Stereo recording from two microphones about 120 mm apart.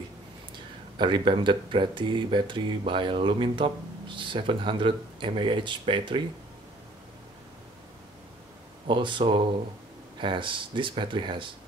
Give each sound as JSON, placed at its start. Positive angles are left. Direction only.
{"t": 0.9, "sound": "speech", "side_deg": -40}
{"t": 8.8, "sound": "speech", "side_deg": -40}